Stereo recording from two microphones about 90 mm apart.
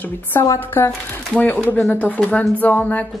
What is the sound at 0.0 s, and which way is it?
Speech, 25° left (ahead or behind).